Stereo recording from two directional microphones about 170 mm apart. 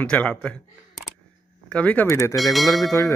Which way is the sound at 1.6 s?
5° left (ahead or behind).